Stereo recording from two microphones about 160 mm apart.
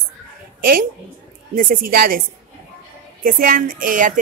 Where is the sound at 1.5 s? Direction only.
65° right (ahead or behind).